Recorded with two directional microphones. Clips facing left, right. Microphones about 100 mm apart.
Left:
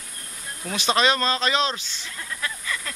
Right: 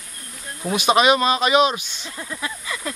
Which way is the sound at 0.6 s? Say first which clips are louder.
Right 5 dB; 15° right (ahead or behind).